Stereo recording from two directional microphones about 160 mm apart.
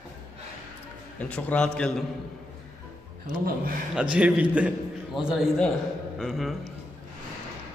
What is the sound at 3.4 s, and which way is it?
Speech, 65° right (ahead or behind).